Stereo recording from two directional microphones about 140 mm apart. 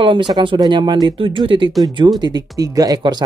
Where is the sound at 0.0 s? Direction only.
35° right (ahead or behind).